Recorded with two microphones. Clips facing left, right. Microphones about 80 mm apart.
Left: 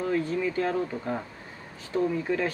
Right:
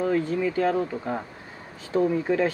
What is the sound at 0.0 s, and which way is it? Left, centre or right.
Speech, right.